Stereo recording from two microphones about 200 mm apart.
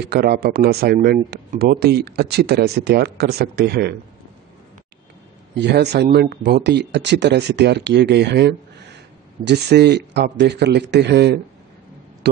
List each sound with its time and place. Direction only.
0.0 s speech: 55° right (ahead or behind)
5.6 s speech: 55° right (ahead or behind)